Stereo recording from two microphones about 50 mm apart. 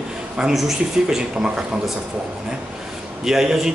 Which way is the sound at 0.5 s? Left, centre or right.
Centre.